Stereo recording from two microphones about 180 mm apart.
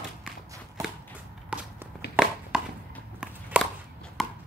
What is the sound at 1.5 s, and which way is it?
Walk, 5° right (ahead or behind).